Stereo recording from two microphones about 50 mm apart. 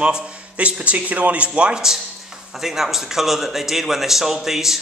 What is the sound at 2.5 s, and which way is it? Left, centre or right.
Speech, centre.